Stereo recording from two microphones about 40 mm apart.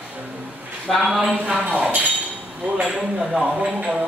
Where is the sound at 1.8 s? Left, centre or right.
Right.